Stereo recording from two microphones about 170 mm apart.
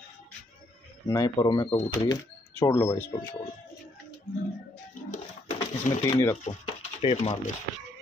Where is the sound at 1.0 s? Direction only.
20° left (ahead or behind).